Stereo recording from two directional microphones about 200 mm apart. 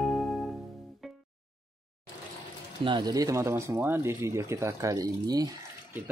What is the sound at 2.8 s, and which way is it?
Speech, 20° right (ahead or behind).